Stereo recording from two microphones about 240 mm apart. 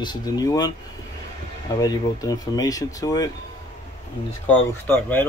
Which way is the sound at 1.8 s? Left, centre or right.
Centre.